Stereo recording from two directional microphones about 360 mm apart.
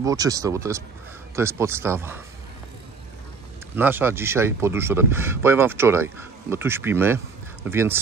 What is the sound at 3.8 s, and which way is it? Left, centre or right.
Speech, centre.